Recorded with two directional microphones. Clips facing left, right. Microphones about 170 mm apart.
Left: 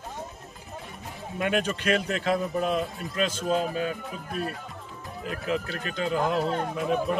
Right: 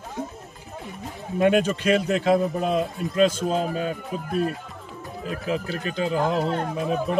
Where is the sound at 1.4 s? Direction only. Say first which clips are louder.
Right 7 dB; 35° right (ahead or behind).